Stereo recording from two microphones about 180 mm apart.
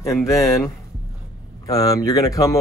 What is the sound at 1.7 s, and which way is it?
Speech, 20° left (ahead or behind).